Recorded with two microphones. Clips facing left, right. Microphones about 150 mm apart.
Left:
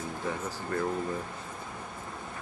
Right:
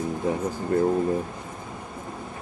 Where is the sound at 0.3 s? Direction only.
25° right (ahead or behind).